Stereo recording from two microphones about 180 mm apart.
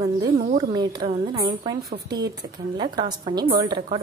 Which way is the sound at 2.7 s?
25° right (ahead or behind).